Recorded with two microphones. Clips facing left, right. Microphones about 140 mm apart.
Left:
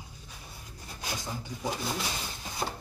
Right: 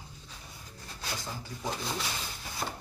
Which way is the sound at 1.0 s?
15° left (ahead or behind).